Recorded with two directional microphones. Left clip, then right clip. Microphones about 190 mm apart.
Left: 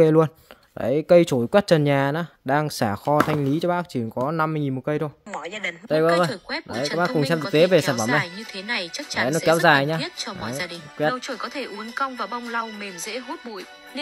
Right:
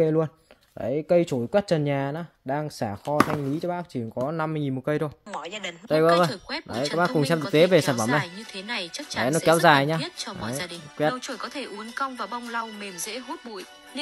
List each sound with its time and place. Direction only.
0.0 s speech: 30° left (ahead or behind)
4.4 s speech: 15° left (ahead or behind)
5.3 s speech: 20° left (ahead or behind)
7.5 s speech: centre (ahead or behind)
7.9 s speech: 15° left (ahead or behind)
9.5 s speech: centre (ahead or behind)
9.9 s speech: 15° left (ahead or behind)